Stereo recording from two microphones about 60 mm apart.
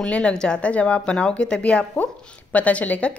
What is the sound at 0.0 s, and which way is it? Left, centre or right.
Speech, centre.